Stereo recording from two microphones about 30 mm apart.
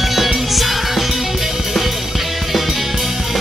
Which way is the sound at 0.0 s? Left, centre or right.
Centre.